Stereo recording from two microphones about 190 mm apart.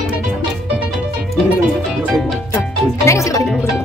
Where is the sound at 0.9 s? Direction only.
Centre (ahead or behind).